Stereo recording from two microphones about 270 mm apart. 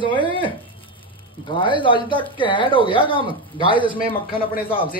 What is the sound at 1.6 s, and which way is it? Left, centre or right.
Speech, centre.